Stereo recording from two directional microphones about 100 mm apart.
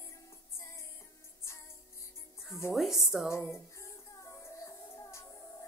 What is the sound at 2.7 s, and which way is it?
Speech, centre (ahead or behind).